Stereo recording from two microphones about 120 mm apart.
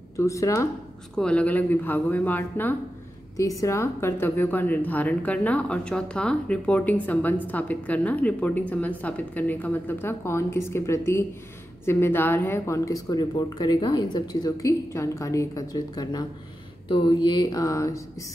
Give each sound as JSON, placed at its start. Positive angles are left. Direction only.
{"t": 0.2, "sound": "a woman's voice", "side_deg": 25}
{"t": 1.1, "sound": "a woman's voice", "side_deg": 10}
{"t": 3.3, "sound": "a woman's voice", "side_deg": 25}